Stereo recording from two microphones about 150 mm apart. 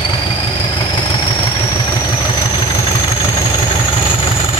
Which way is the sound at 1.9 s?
25° left (ahead or behind).